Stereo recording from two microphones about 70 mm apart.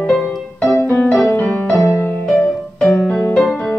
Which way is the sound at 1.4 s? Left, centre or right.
Left.